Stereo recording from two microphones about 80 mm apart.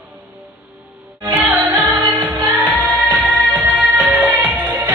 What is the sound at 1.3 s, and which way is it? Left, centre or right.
Music, right.